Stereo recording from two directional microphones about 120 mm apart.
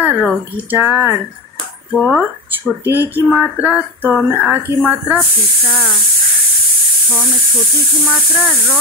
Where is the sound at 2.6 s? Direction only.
20° right (ahead or behind).